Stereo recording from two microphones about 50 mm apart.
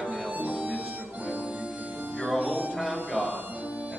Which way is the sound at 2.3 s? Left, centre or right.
Right.